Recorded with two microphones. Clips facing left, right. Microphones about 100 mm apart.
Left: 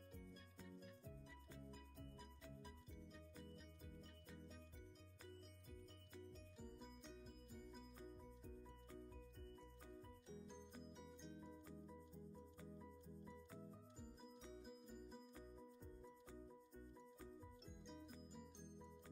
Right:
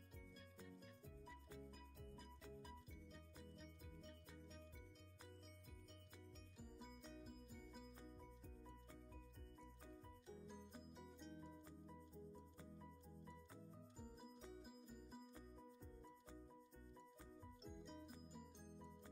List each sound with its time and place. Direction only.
6.6 s music: 5° right (ahead or behind)
11.0 s music: centre (ahead or behind)
14.4 s music: centre (ahead or behind)
17.6 s music: centre (ahead or behind)